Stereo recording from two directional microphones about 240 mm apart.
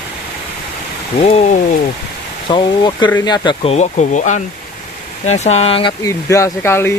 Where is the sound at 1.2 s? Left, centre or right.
Left.